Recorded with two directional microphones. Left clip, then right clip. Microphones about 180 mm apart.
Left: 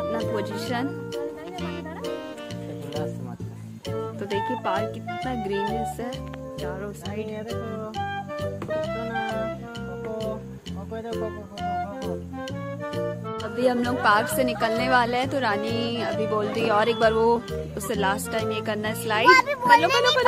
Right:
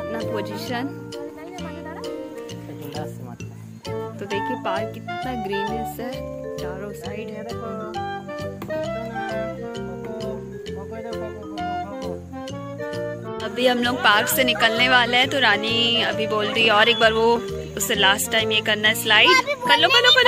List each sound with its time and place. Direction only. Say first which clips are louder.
0.0 s speech: even; centre (ahead or behind)
3.9 s speech: right 1 dB; centre (ahead or behind)
7.9 s music: right 1 dB; centre (ahead or behind)
11.1 s music: left 1 dB; centre (ahead or behind)
14.0 s speech: right 3 dB; centre (ahead or behind)
19.3 s a sound: even; 20° left (ahead or behind)
19.6 s speech: right 2 dB; centre (ahead or behind)